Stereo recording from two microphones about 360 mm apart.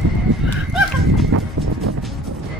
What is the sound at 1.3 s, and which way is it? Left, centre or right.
Music, right.